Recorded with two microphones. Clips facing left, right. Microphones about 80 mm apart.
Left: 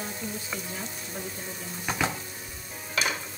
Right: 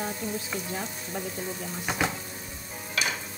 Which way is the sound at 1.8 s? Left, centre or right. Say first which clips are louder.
Even; centre.